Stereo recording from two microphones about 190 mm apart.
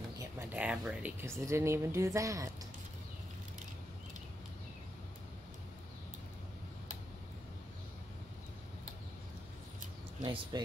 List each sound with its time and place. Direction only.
0.2 s speech: 10° right (ahead or behind)
10.2 s speech: 25° right (ahead or behind)